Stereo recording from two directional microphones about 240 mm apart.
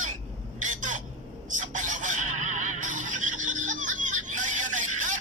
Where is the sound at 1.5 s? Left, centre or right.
Right.